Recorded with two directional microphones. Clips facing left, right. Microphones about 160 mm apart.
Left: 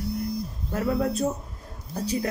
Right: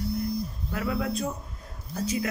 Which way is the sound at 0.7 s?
40° left (ahead or behind).